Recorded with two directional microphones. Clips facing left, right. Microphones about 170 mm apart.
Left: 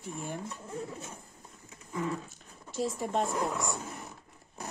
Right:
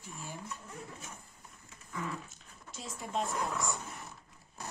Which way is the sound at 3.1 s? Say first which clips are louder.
Left 3 dB; centre (ahead or behind).